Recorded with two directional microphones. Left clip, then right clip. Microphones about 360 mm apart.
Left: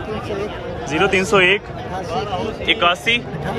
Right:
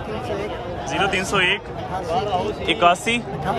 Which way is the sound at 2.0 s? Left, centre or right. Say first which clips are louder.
Right 2 dB; right.